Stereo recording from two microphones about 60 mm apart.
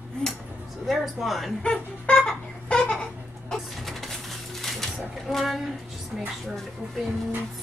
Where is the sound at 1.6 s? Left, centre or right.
Centre.